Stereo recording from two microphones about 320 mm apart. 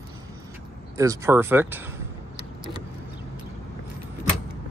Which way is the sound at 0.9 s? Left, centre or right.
Centre.